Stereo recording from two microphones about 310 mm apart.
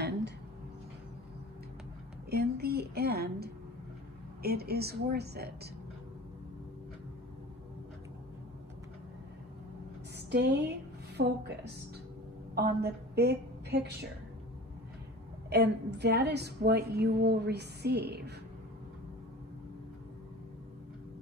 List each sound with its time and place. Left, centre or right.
2.3 s a sound: right
4.4 s a woman's voice: right
10.3 s a woman's voice: right
12.5 s a woman's voice: right
15.5 s a woman's voice: right